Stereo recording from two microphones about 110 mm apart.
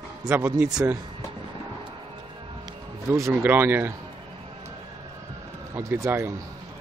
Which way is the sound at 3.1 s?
25° right (ahead or behind).